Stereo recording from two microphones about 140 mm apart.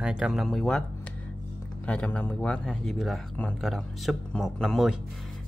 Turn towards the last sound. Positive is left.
turn(degrees=0)  # may be behind; listen again after turning